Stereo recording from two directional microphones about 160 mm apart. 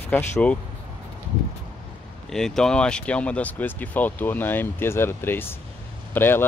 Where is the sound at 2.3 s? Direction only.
5° left (ahead or behind).